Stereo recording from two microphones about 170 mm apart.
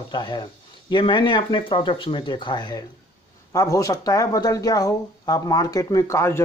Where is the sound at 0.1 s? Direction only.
25° left (ahead or behind).